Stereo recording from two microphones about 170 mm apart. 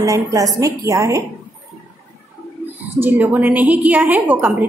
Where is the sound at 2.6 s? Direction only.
10° right (ahead or behind).